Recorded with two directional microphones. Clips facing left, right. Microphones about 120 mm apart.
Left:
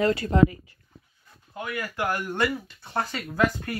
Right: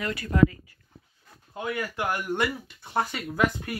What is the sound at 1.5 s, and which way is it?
Speech, 25° right (ahead or behind).